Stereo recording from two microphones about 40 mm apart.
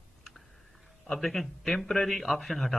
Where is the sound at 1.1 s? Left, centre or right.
Centre.